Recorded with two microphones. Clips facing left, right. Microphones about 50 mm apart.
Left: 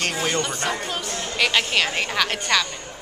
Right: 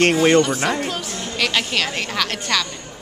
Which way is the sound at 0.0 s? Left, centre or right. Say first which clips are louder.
Right 10 dB; right.